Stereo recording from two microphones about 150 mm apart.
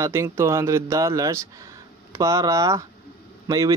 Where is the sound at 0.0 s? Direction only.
20° right (ahead or behind).